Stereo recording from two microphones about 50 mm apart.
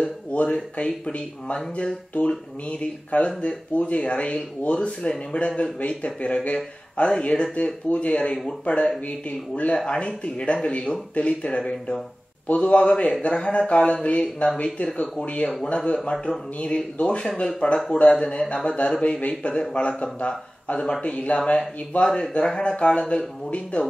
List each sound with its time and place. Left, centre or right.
0.0 s speech: left
22.0 s speech: centre